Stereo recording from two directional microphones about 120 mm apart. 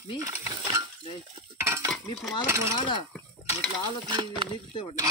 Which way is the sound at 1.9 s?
Centre (ahead or behind).